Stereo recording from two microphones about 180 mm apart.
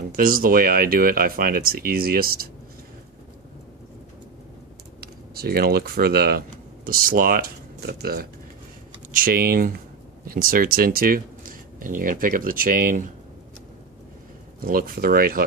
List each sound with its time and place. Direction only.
0.1 s speech: 55° right (ahead or behind)
5.0 s speech: 60° right (ahead or behind)
14.6 s speech: 55° right (ahead or behind)